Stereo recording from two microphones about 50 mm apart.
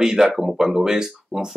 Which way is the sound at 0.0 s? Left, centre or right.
Centre.